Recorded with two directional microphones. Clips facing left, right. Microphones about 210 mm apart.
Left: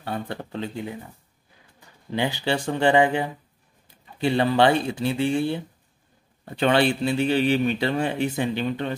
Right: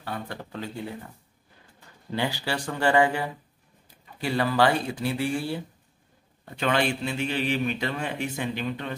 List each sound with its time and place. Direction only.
0.0 s speech: 25° left (ahead or behind)
2.0 s speech: 20° left (ahead or behind)